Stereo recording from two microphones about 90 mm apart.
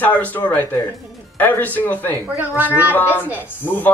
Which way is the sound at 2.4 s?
20° right (ahead or behind).